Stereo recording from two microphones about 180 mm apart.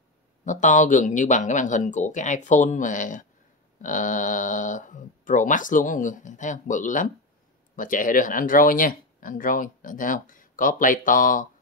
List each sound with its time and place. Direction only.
0.5 s speech: 45° left (ahead or behind)